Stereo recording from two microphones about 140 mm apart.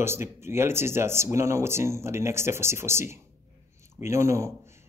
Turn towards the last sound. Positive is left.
turn(degrees=-20)  # may be behind; listen again after turning